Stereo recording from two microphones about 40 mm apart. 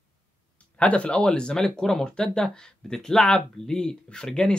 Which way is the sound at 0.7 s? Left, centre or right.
Left.